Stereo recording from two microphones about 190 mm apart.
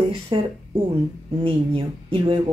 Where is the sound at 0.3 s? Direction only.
25° right (ahead or behind).